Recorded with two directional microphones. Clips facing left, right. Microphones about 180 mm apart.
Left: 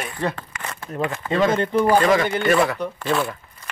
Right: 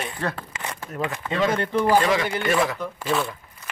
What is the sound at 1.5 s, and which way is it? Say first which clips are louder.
Speech: left 3 dB; 20° left (ahead or behind).